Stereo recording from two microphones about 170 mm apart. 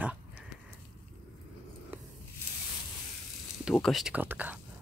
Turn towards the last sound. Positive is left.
turn(degrees=-10)  # may be behind; listen again after turning